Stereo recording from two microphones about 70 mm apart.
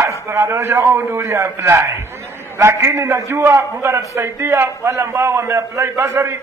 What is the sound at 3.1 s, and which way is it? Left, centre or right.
A man's voice, right.